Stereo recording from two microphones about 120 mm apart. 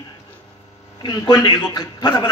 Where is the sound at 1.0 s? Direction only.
40° left (ahead or behind).